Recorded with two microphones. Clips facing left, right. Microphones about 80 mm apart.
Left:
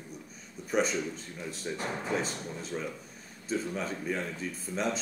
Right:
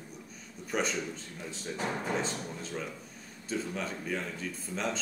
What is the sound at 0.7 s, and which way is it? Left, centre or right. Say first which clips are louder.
Speech: left 3 dB; centre.